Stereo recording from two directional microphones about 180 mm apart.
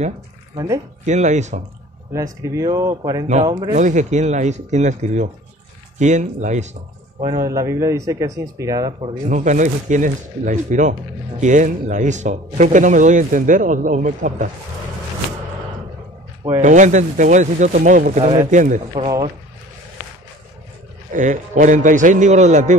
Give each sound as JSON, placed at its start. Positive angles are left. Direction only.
{"t": 1.0, "sound": "speech", "side_deg": -40}
{"t": 2.4, "sound": "a man's voice", "side_deg": -15}
{"t": 3.7, "sound": "speech", "side_deg": -40}
{"t": 7.2, "sound": "a man's voice", "side_deg": -20}
{"t": 9.0, "sound": "speech", "side_deg": -40}
{"t": 16.6, "sound": "speech", "side_deg": -40}
{"t": 18.9, "sound": "a man's voice", "side_deg": -25}
{"t": 21.1, "sound": "speech", "side_deg": -45}